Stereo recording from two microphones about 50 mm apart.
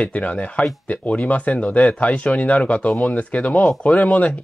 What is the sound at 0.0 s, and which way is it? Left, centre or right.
Speech, left.